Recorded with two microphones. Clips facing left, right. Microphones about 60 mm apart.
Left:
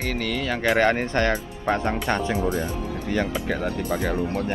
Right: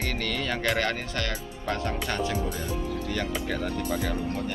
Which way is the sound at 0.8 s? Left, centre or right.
Left.